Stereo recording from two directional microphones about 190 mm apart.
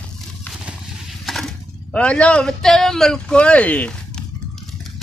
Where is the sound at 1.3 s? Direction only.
Centre (ahead or behind).